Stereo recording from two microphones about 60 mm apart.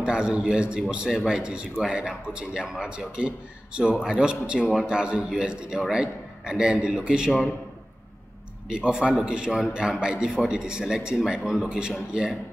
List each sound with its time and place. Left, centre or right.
0.0 s a man's voice: centre
4.8 s a man's voice: centre
8.6 s a man's voice: centre